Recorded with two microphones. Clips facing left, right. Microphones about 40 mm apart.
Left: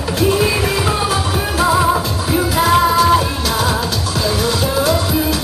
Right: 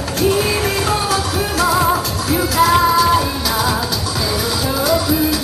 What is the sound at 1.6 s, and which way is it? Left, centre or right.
Music, centre.